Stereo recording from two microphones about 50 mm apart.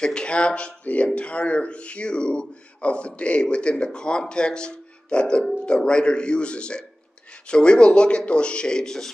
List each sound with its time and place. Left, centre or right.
0.0 s speech: centre